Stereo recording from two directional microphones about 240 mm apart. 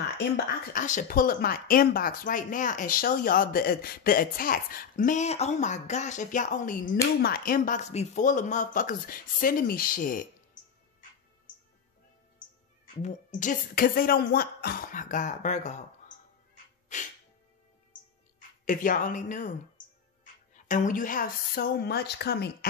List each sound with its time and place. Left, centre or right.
0.7 s speech: left
12.8 s speech: left
16.9 s music: left
18.7 s speech: left
20.5 s speech: left